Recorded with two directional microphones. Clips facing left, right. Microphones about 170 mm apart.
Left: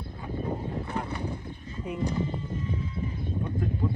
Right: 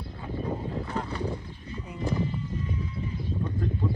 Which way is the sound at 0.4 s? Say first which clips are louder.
Even; 10° left (ahead or behind).